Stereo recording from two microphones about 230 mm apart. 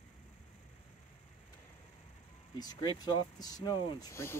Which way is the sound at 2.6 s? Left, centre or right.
Centre.